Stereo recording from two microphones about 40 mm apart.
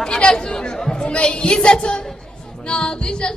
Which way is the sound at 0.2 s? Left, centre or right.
Centre.